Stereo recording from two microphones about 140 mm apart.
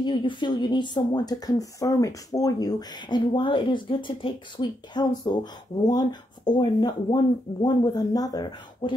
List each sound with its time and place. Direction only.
0.0 s speech: 35° left (ahead or behind)